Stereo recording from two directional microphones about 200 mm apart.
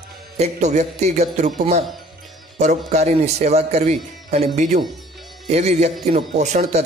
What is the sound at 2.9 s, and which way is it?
Speech, 35° right (ahead or behind).